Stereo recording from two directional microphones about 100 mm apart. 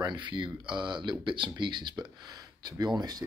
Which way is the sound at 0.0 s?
50° right (ahead or behind).